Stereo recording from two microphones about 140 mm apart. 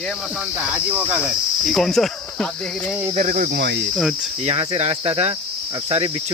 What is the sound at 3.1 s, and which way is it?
Speech, 75° right (ahead or behind).